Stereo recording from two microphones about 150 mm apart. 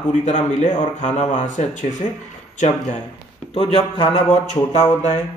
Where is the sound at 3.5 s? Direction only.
40° left (ahead or behind).